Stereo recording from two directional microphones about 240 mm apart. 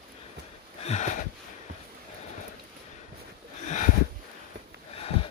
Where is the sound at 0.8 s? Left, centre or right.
Left.